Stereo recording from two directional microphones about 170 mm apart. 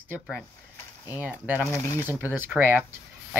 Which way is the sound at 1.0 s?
10° right (ahead or behind).